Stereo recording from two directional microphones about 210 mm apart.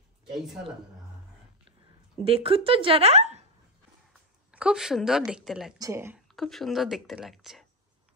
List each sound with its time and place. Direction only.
2.2 s speech: 25° right (ahead or behind)
4.5 s a woman's voice: 5° right (ahead or behind)
5.8 s speech: 15° right (ahead or behind)
6.3 s a woman's voice: centre (ahead or behind)